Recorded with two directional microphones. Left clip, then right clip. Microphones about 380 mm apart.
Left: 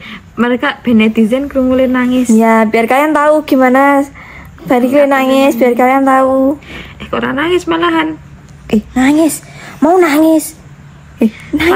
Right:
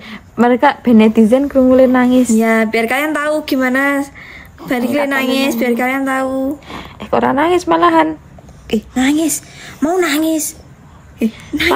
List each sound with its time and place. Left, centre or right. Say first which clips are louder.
0.0 s speech: right 1 dB; right
2.3 s speech: left 4 dB; centre
6.7 s speech: right 2 dB; right
8.6 s a woman's voice: left 4 dB; centre